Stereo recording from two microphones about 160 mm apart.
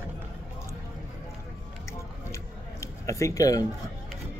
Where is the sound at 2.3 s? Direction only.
20° left (ahead or behind).